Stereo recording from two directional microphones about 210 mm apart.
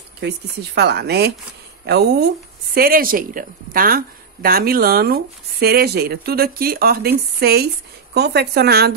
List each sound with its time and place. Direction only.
0.2 s a woman's voice: 50° right (ahead or behind)